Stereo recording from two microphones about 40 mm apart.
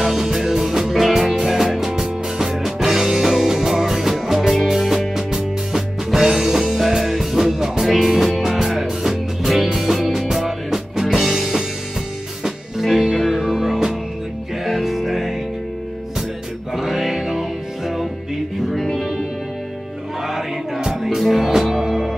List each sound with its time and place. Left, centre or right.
0.0 s music: centre
16.7 s music: centre
20.2 s music: centre